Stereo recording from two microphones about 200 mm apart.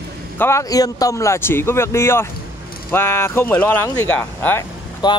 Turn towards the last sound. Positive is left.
turn(degrees=20)  # may be behind; listen again after turning